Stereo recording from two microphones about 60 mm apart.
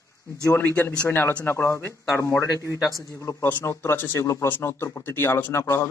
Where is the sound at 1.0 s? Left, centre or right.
Left.